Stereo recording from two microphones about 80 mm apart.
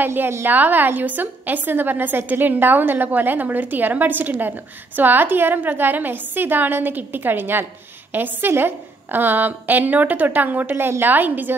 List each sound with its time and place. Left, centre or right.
0.0 s a woman's voice: right